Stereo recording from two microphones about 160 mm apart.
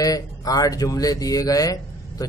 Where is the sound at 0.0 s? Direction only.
20° left (ahead or behind).